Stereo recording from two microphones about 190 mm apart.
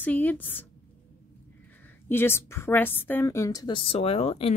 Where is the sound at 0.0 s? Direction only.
10° left (ahead or behind).